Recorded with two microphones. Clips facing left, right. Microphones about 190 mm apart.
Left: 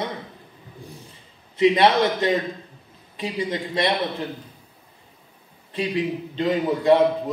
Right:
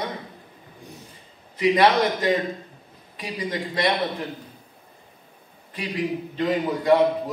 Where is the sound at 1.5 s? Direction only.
25° left (ahead or behind).